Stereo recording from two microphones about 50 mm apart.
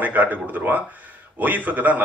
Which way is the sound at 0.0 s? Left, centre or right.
Right.